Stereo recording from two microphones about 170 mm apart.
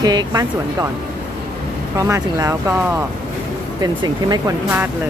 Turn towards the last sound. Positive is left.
turn(degrees=-25)  # may be behind; listen again after turning